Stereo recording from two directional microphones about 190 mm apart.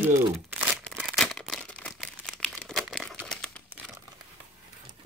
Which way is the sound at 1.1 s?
5° left (ahead or behind).